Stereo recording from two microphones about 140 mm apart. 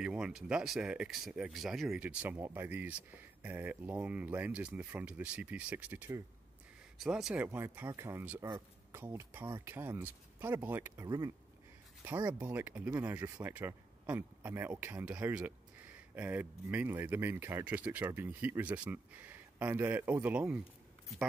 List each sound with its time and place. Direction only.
0.0 s speech: 5° right (ahead or behind)
7.0 s speech: centre (ahead or behind)
7.4 s speech: 15° right (ahead or behind)
11.1 s speech: 25° right (ahead or behind)
12.3 s speech: 10° right (ahead or behind)